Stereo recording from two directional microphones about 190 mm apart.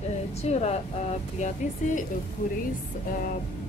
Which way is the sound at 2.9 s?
45° left (ahead or behind).